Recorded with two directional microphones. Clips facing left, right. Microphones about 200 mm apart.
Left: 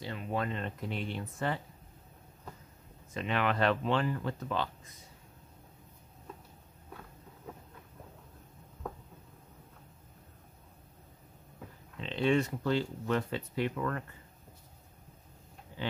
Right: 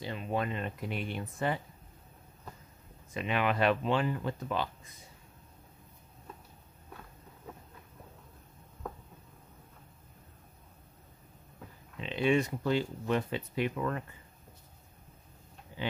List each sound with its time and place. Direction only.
0.0 s speech: 20° right (ahead or behind)
3.2 s speech: 10° right (ahead or behind)
12.0 s speech: 10° right (ahead or behind)
15.8 s speech: 15° right (ahead or behind)